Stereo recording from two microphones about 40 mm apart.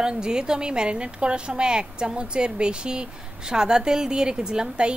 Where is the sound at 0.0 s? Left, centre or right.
Centre.